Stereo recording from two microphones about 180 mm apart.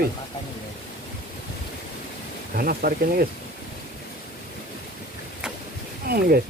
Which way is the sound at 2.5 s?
55° right (ahead or behind).